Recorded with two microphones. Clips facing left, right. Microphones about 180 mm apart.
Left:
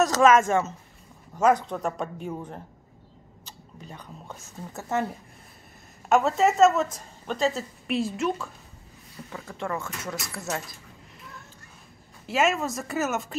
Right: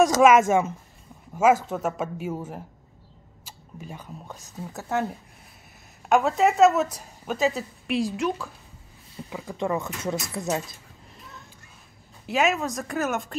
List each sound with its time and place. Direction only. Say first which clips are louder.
0.0 s a woman's voice: right 2 dB; 10° right (ahead or behind)
9.3 s speech: right 5 dB; 15° right (ahead or behind)
12.3 s a woman's voice: right 1 dB; centre (ahead or behind)